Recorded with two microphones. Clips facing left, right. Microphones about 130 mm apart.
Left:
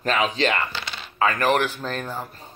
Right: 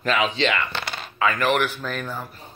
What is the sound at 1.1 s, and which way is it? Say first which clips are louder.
Speech: left 1 dB; 40° left (ahead or behind).